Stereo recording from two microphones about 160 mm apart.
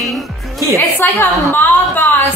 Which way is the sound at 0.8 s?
10° left (ahead or behind).